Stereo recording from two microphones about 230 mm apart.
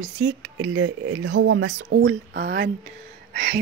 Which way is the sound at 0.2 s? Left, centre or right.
Right.